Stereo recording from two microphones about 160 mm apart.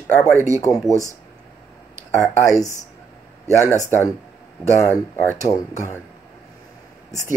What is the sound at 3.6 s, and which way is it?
Speech, 15° right (ahead or behind).